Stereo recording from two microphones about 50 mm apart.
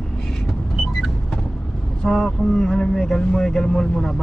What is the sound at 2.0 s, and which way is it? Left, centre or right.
Speech, centre.